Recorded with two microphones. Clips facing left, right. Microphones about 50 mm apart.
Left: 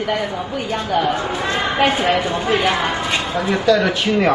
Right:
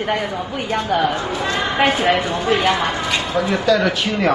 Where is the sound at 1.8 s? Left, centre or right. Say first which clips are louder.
Right 1 dB; right.